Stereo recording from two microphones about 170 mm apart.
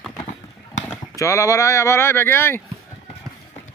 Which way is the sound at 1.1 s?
20° left (ahead or behind).